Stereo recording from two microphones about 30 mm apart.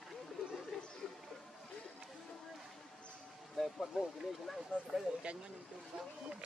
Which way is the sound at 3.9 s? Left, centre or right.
Right.